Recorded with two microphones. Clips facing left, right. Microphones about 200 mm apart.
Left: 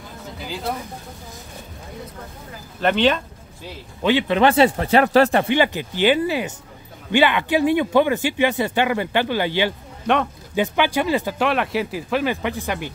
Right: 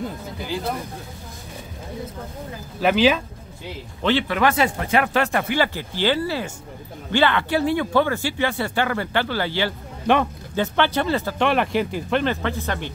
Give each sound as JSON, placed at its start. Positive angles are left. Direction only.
{"t": 2.8, "sound": "speech", "side_deg": -5}
{"t": 4.0, "sound": "speech", "side_deg": 15}
{"t": 4.4, "sound": "speech", "side_deg": 30}
{"t": 11.4, "sound": "speech", "side_deg": 0}